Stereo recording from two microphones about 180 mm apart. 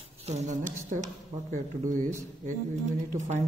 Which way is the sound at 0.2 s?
40° right (ahead or behind).